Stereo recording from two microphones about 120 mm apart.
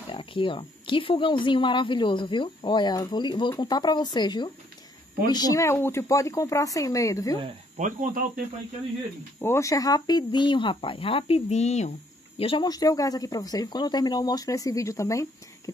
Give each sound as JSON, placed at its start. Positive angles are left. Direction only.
{"t": 0.1, "sound": "speech", "side_deg": 45}
{"t": 7.7, "sound": "speech", "side_deg": -90}
{"t": 9.4, "sound": "speech", "side_deg": 25}
{"t": 12.4, "sound": "speech", "side_deg": 50}
{"t": 12.6, "sound": "speech", "side_deg": 30}